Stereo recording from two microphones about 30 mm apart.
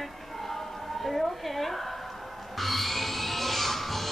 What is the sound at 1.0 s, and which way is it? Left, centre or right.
Speech, centre.